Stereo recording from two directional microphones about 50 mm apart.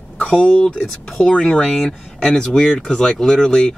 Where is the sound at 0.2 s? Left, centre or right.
Left.